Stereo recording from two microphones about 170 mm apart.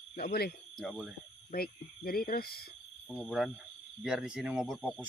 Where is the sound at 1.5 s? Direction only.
60° left (ahead or behind).